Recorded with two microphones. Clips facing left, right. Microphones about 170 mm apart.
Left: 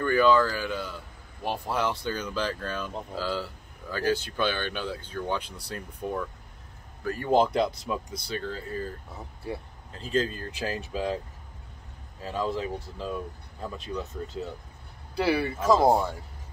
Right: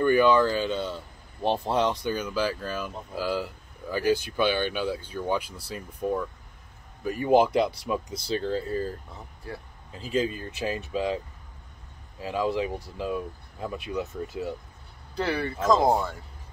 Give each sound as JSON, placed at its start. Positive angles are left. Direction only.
{"t": 0.0, "sound": "speech", "side_deg": -20}
{"t": 8.3, "sound": "speech", "side_deg": -30}
{"t": 9.9, "sound": "speech", "side_deg": -10}
{"t": 12.2, "sound": "speech", "side_deg": -10}
{"t": 15.1, "sound": "speech", "side_deg": 10}